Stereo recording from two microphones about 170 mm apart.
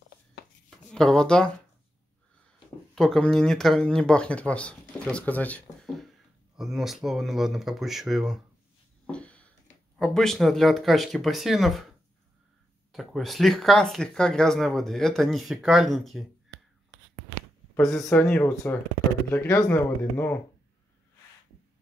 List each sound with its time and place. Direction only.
0.7 s a sound: centre (ahead or behind)
2.9 s speech: 5° left (ahead or behind)
9.0 s a sound: 5° left (ahead or behind)
9.9 s speech: centre (ahead or behind)
12.9 s speech: centre (ahead or behind)
17.7 s speech: 5° left (ahead or behind)